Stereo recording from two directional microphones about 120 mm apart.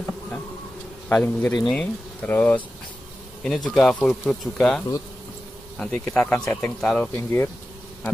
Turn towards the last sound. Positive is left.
turn(degrees=20)  # may be behind; listen again after turning